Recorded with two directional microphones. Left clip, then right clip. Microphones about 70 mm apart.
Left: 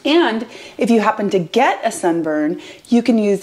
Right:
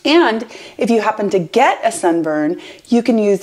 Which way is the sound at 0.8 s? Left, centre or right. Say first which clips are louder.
Even; centre.